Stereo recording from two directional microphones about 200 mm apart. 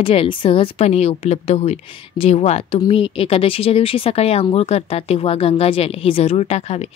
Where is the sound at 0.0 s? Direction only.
25° left (ahead or behind).